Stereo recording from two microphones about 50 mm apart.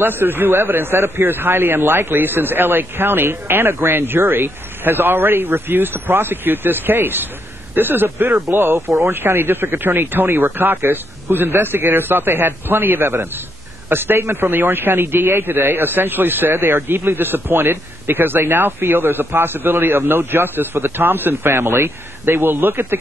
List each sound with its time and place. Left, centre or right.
0.0 s a man's voice: right